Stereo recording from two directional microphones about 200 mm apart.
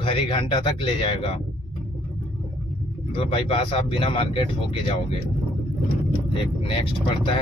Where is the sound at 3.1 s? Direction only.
25° left (ahead or behind).